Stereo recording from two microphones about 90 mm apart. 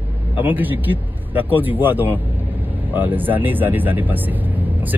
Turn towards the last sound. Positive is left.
turn(degrees=-20)  # may be behind; listen again after turning